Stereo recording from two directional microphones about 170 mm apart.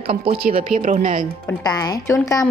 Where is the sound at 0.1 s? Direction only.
35° right (ahead or behind).